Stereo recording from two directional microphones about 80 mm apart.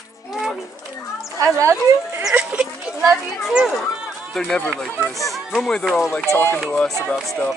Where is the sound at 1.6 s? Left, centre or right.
Right.